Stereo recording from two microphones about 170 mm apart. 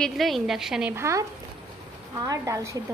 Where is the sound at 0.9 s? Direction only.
15° right (ahead or behind).